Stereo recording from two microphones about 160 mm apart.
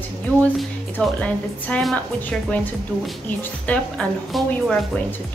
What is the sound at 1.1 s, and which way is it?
A woman's voice, 10° left (ahead or behind).